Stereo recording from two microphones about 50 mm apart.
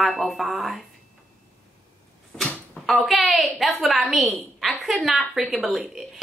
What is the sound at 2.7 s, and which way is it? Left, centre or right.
A woman's voice, centre.